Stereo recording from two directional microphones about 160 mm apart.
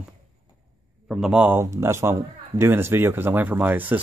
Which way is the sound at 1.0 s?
5° right (ahead or behind).